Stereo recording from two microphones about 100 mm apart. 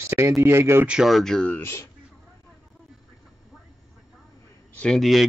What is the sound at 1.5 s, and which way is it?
Speech, 20° left (ahead or behind).